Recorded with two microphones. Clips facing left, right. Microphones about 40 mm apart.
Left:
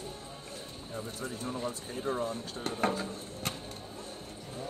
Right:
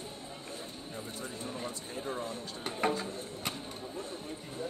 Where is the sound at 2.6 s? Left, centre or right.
Centre.